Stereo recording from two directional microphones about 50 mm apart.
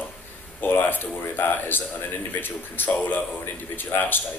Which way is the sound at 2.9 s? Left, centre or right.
Left.